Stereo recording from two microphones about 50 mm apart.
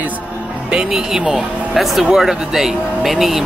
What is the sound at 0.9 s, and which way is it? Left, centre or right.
Speech, centre.